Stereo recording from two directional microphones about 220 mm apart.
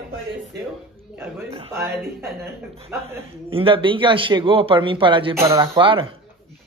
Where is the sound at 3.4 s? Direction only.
25° right (ahead or behind).